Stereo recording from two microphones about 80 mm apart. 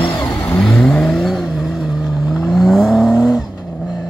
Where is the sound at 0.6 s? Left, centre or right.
Centre.